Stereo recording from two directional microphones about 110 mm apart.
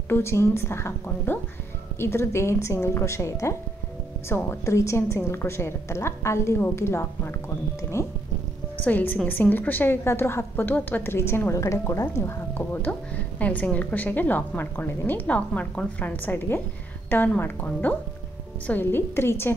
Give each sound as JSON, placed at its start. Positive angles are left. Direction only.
{"t": 0.1, "sound": "a woman's voice", "side_deg": 25}